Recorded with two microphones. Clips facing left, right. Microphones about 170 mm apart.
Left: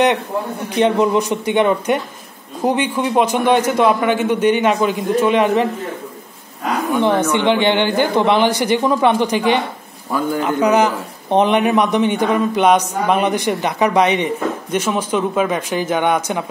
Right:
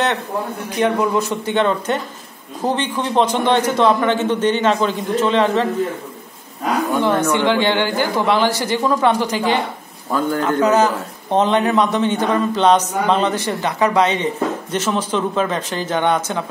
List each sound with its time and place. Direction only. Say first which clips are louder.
0.7 s a man's voice: left 3 dB; 20° left (ahead or behind)
7.2 s a man's voice: left 1 dB; 20° left (ahead or behind)